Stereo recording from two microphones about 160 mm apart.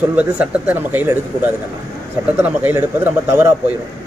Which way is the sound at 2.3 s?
10° right (ahead or behind).